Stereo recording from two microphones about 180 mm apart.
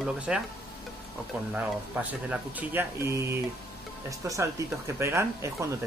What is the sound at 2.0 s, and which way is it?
Speech, 5° right (ahead or behind).